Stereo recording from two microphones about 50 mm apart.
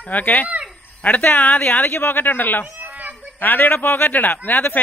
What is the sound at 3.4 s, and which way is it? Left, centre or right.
Speech, left.